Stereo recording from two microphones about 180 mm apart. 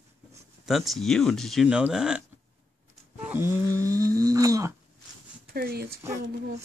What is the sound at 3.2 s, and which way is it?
Snoring, 10° right (ahead or behind).